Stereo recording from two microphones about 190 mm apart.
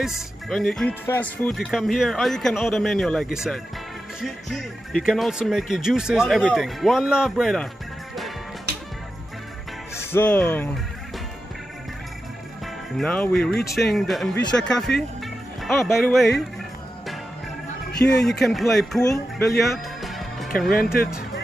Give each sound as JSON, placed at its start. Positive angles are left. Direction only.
{"t": 0.0, "sound": "speech", "side_deg": 0}
{"t": 9.9, "sound": "speech", "side_deg": 10}
{"t": 12.9, "sound": "speech", "side_deg": 5}
{"t": 17.9, "sound": "speech", "side_deg": 0}
{"t": 18.9, "sound": "speech", "side_deg": 15}
{"t": 19.6, "sound": "music", "side_deg": 0}
{"t": 20.7, "sound": "speech", "side_deg": 50}